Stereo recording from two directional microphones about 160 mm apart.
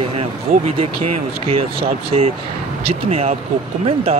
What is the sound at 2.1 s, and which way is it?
Speech, 40° right (ahead or behind).